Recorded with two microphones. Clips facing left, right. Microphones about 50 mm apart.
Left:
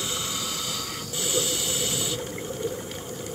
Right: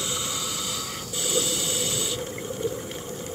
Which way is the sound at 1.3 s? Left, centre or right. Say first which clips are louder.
Right 1 dB; centre.